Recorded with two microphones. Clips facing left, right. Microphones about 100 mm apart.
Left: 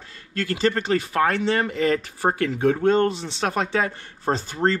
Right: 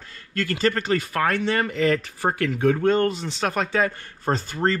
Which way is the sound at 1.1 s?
25° left (ahead or behind).